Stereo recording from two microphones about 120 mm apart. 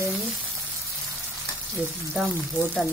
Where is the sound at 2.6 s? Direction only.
20° right (ahead or behind).